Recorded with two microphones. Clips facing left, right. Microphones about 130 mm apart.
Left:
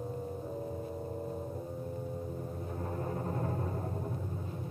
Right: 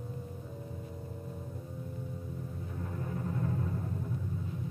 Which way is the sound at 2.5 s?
40° left (ahead or behind).